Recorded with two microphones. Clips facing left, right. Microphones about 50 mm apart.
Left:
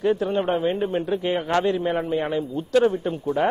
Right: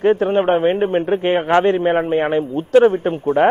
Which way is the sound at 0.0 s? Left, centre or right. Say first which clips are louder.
Right 7 dB; right.